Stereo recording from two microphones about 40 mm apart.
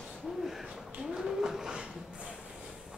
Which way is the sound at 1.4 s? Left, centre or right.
Centre.